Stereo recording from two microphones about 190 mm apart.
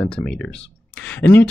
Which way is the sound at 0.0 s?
5° left (ahead or behind).